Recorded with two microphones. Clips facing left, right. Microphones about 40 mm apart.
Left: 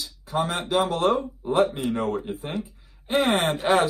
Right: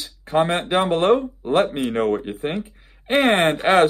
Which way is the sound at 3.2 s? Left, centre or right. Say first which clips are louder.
Right 5 dB; right.